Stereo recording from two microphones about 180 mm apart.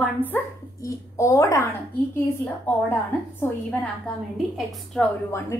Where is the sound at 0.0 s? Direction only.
10° left (ahead or behind).